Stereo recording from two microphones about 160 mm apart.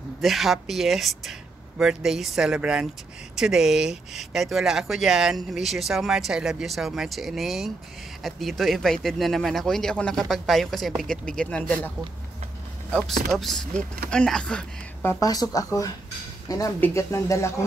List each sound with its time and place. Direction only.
0.2 s speech: centre (ahead or behind)
12.9 s speech: centre (ahead or behind)
15.1 s speech: 25° left (ahead or behind)